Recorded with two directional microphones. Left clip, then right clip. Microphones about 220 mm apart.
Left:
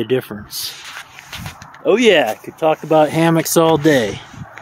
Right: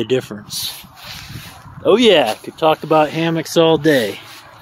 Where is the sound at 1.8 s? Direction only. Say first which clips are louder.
Right 1 dB; 5° right (ahead or behind).